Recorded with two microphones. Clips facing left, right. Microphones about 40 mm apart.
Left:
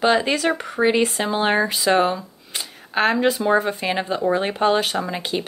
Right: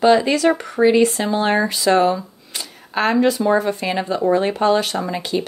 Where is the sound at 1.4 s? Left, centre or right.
Centre.